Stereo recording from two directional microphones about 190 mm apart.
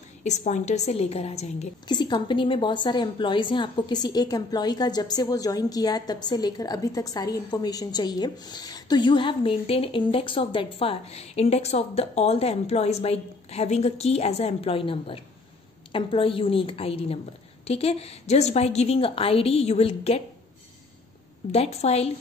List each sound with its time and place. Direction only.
0.2 s a woman's voice: 35° left (ahead or behind)
1.9 s a woman's voice: 25° left (ahead or behind)
21.5 s a woman's voice: 35° left (ahead or behind)